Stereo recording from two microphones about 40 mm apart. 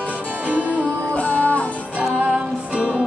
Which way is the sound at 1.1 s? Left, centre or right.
Left.